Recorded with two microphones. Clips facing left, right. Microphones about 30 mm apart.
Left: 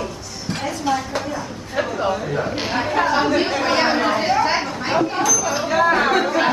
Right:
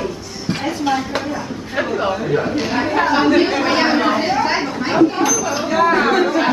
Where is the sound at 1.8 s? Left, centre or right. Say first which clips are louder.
Right 2 dB; centre.